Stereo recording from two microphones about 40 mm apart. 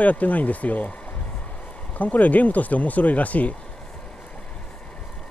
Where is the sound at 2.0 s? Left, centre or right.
Left.